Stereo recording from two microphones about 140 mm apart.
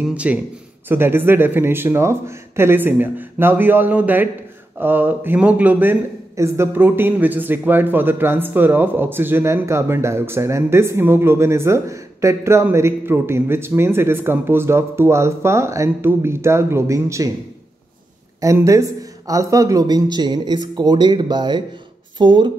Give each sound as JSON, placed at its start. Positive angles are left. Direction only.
{"t": 0.0, "sound": "speech", "side_deg": -10}
{"t": 18.4, "sound": "speech", "side_deg": -25}